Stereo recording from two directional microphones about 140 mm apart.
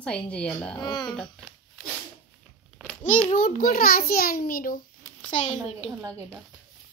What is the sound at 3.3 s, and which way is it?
A child's voice, 90° left.